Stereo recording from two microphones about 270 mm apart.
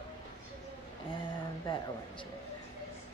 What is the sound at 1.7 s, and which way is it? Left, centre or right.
Speech, centre.